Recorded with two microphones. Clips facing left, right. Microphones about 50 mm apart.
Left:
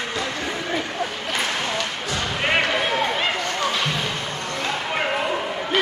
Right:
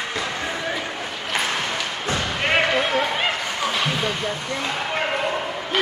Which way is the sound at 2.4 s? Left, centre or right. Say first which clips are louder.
Right 1 dB; centre.